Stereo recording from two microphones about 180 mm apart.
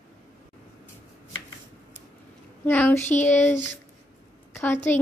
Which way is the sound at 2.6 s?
10° left (ahead or behind).